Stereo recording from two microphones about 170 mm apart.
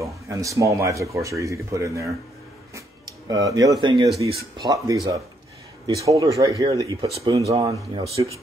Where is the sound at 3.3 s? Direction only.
20° right (ahead or behind).